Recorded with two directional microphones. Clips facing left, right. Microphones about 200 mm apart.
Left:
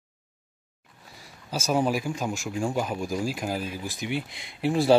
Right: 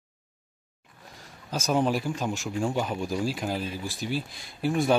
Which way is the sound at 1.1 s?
10° left (ahead or behind).